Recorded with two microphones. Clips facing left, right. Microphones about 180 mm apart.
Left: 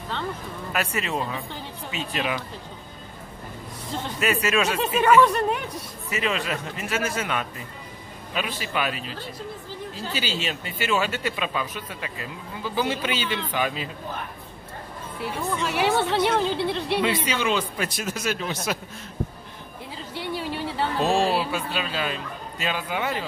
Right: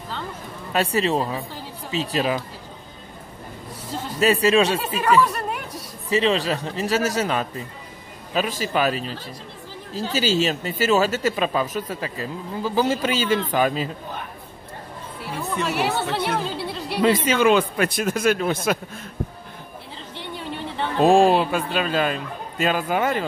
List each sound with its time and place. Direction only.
0.7 s speech: 35° right (ahead or behind)
4.2 s speech: 30° right (ahead or behind)
5.0 s speech: 5° right (ahead or behind)
6.0 s speech: 30° right (ahead or behind)
10.1 s speech: 40° right (ahead or behind)
15.7 s a woman's voice: centre (ahead or behind)
17.0 s speech: 50° right (ahead or behind)
20.2 s a sound: 5° left (ahead or behind)
21.0 s speech: 50° right (ahead or behind)